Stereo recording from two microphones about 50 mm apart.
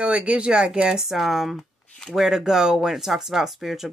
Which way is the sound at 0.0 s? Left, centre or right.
Right.